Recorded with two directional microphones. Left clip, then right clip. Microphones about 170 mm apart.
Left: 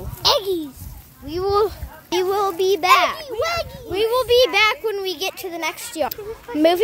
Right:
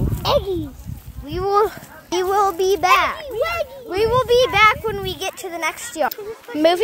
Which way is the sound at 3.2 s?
50° left (ahead or behind).